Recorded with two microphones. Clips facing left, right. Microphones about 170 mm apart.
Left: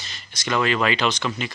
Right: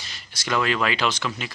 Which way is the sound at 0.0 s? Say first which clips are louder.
Left 3 dB; 10° right (ahead or behind).